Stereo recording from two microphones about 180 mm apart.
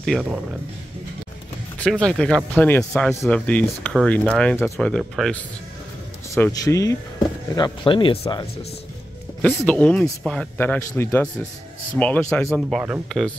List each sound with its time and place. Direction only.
0.0 s speech: centre (ahead or behind)
1.8 s speech: 5° left (ahead or behind)
6.3 s speech: 20° left (ahead or behind)
9.6 s speech: 10° left (ahead or behind)